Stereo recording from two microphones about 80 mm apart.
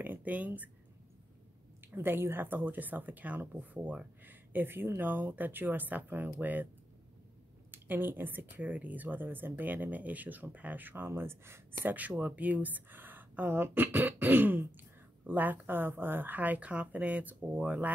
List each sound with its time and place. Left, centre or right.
0.0 s a woman's voice: right
1.8 s a woman's voice: right
7.7 s a woman's voice: right